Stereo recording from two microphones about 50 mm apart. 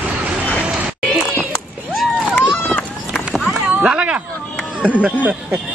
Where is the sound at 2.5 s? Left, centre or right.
Left.